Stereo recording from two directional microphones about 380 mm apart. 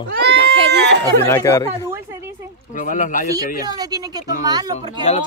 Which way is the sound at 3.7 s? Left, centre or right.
Centre.